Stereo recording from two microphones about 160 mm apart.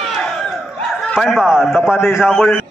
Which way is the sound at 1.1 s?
10° left (ahead or behind).